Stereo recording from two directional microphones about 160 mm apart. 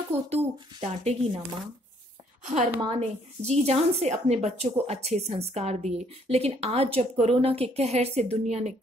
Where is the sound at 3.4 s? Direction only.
40° right (ahead or behind).